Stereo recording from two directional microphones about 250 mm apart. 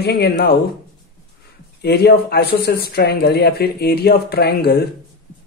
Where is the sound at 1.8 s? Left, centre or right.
Left.